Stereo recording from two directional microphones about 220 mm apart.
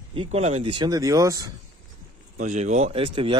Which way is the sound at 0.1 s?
25° right (ahead or behind).